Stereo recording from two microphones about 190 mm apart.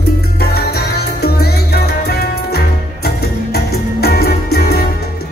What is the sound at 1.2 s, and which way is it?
Music, 55° left (ahead or behind).